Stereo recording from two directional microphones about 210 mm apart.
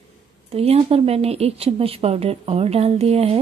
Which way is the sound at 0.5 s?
30° right (ahead or behind).